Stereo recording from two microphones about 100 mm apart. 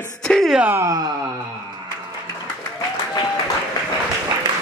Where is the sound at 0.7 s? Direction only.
30° right (ahead or behind).